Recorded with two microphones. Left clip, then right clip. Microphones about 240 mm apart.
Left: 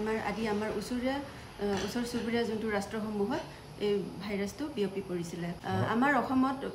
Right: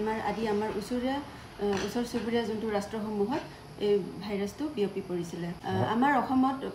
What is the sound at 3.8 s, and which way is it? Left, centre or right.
A woman's voice, centre.